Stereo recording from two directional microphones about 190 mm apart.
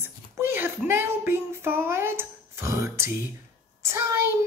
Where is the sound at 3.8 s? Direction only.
15° right (ahead or behind).